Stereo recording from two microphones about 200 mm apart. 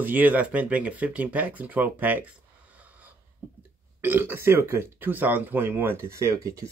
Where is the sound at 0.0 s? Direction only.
10° right (ahead or behind).